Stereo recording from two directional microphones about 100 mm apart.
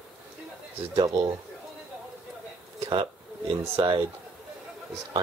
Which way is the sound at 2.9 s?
60° right (ahead or behind).